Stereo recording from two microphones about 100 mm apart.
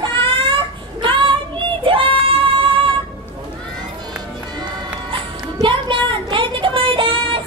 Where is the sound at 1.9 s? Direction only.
60° right (ahead or behind).